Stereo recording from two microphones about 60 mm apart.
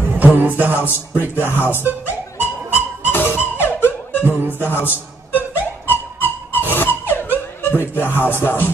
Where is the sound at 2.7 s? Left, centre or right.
Left.